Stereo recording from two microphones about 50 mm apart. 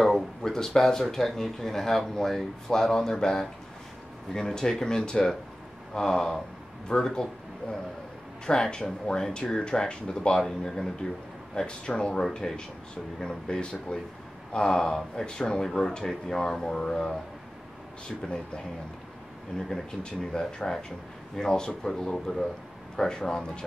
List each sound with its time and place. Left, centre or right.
0.0 s a sound: centre
1.1 s speech: centre
8.5 s speech: centre
10.4 s speech: centre
11.5 s speech: centre
19.7 s speech: centre